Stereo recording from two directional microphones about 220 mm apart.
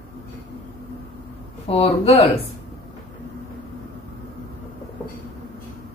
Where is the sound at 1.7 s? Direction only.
25° left (ahead or behind).